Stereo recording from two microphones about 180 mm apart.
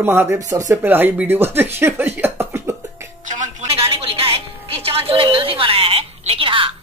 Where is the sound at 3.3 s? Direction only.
40° right (ahead or behind).